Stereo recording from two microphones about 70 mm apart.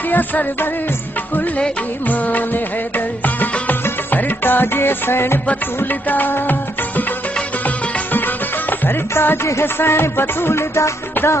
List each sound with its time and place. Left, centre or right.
0.1 s music: left
8.6 s music: left